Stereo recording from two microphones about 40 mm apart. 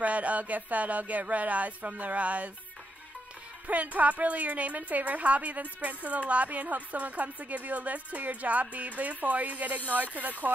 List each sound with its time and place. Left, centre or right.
0.0 s a woman's voice: right
3.6 s a woman's voice: right